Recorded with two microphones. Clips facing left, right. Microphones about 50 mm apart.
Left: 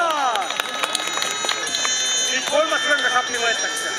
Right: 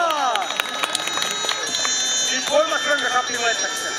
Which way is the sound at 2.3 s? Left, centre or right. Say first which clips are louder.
Right 1 dB; left.